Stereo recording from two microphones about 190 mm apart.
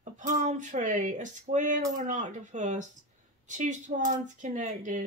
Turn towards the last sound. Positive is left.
turn(degrees=-40)  # may be behind; listen again after turning